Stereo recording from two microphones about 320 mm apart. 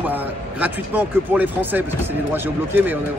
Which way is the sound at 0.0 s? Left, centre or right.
Centre.